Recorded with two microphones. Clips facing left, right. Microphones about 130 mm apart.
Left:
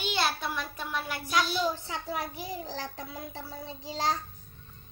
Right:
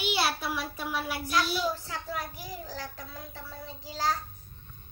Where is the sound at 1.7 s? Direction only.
25° left (ahead or behind).